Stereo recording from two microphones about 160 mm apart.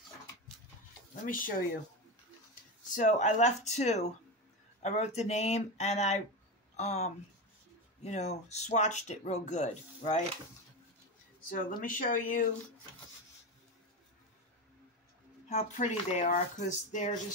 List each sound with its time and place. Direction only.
1.2 s speech: 60° left (ahead or behind)
3.0 s speech: 50° left (ahead or behind)
11.4 s speech: 60° left (ahead or behind)
15.5 s speech: 50° left (ahead or behind)